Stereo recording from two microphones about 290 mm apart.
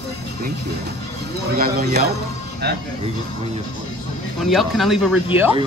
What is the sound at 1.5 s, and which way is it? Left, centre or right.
Speech, right.